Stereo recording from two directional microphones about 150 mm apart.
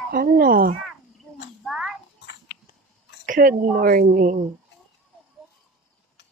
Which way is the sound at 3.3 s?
65° right (ahead or behind).